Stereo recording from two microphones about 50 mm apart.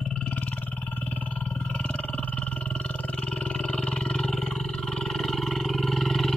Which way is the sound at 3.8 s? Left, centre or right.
Centre.